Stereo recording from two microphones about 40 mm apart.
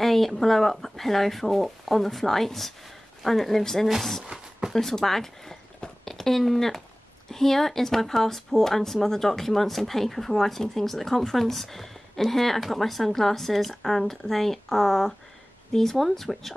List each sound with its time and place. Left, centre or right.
0.0 s speech: centre
4.3 s a sound: centre
4.7 s speech: centre